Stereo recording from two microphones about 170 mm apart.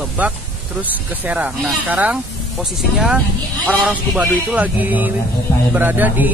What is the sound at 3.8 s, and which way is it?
Speech, 5° right (ahead or behind).